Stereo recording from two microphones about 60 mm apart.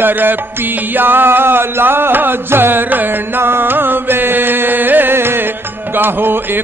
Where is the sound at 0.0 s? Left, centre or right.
Right.